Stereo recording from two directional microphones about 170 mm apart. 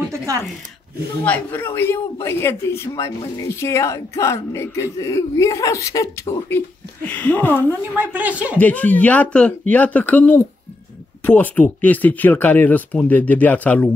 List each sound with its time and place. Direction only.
1.2 s speech: 10° left (ahead or behind)
8.0 s speech: 10° right (ahead or behind)
8.5 s speech: 10° left (ahead or behind)